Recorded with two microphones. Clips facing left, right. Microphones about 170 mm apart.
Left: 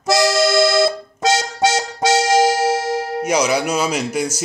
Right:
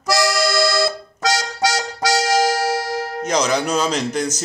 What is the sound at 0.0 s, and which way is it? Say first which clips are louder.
Music: left 3 dB; 25° left (ahead or behind).